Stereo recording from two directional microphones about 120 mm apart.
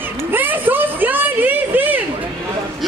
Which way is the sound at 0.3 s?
15° right (ahead or behind).